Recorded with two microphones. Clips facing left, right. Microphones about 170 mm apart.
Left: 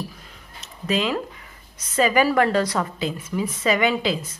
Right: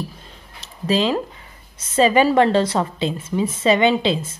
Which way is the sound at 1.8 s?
25° right (ahead or behind).